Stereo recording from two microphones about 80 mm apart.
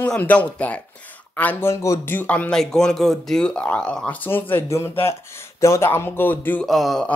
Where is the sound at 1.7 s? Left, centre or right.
Left.